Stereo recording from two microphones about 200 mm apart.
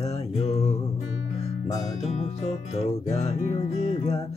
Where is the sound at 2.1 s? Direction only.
35° left (ahead or behind).